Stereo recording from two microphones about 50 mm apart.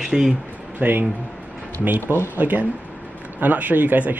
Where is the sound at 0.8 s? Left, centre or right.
Right.